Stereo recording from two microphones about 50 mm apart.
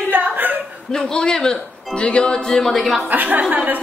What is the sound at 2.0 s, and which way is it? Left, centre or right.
Music, centre.